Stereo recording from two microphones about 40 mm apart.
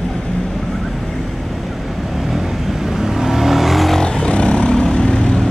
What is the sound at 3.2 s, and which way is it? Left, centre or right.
Vehicle, centre.